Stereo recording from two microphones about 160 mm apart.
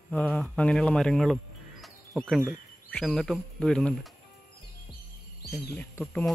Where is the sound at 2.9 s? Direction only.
5° left (ahead or behind).